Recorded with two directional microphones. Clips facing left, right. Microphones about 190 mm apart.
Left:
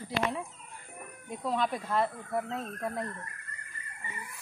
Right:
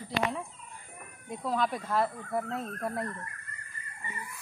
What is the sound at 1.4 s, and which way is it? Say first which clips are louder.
A woman's voice: even; centre (ahead or behind).